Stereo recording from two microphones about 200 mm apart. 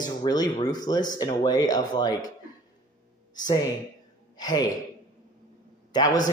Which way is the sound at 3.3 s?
20° left (ahead or behind).